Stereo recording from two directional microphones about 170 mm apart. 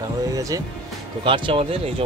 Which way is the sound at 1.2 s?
30° right (ahead or behind).